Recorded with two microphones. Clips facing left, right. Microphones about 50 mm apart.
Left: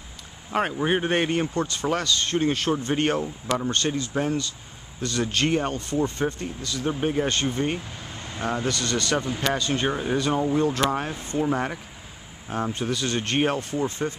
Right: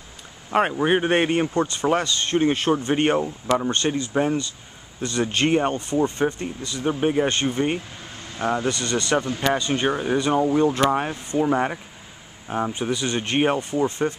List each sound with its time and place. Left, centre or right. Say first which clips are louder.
0.5 s speech: right 4 dB; centre